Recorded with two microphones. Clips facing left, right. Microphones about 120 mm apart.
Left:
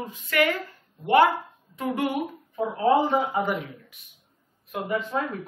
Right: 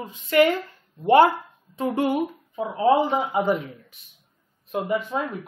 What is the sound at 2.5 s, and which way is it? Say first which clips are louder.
Speech: right 1 dB; 20° right (ahead or behind).